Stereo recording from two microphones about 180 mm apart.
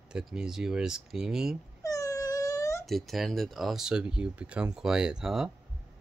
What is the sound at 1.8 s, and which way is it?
Wail, 20° left (ahead or behind).